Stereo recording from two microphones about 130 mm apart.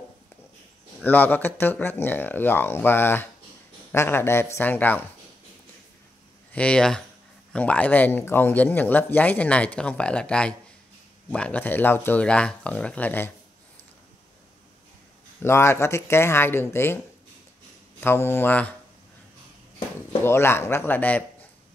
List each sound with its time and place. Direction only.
1.0 s speech: 15° left (ahead or behind)
6.5 s speech: 10° left (ahead or behind)
15.4 s speech: 20° left (ahead or behind)
18.0 s speech: 20° left (ahead or behind)
20.2 s speech: 20° left (ahead or behind)